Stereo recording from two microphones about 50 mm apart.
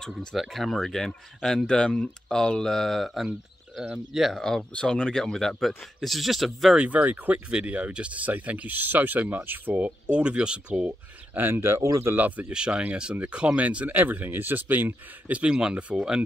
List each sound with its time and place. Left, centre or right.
0.1 s speech: centre
4.4 s speech: centre
6.8 s speech: right
7.3 s speech: right
11.5 s speech: right
12.2 s speech: right
12.4 s speech: centre; by 15.3 s right
15.3 s speech: centre